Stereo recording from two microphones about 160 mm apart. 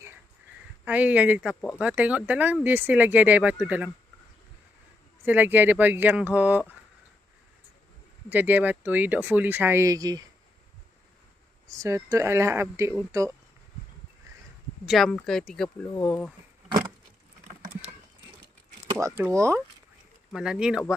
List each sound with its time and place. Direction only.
0.8 s speech: 10° right (ahead or behind)
5.2 s speech: 10° right (ahead or behind)
8.3 s speech: 10° right (ahead or behind)
11.6 s speech: 20° right (ahead or behind)
14.9 s speech: centre (ahead or behind)
17.5 s vehicle: 45° right (ahead or behind)
18.9 s speech: 15° right (ahead or behind)
20.3 s speech: 5° right (ahead or behind)